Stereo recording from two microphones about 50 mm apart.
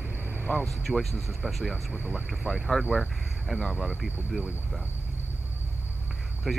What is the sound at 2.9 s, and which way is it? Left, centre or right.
Speech, centre.